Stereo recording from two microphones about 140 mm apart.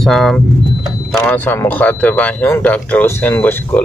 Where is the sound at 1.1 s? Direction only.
10° left (ahead or behind).